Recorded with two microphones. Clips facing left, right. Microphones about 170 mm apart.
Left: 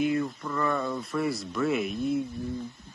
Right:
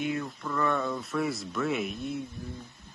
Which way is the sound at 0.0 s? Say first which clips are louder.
Left 5 dB; centre (ahead or behind).